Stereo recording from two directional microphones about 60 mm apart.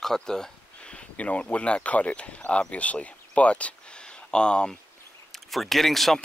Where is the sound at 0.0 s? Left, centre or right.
Centre.